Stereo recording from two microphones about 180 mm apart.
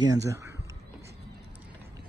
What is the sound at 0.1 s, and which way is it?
Speech, 15° right (ahead or behind).